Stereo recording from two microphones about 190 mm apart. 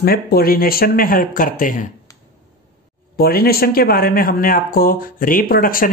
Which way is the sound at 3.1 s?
55° left (ahead or behind).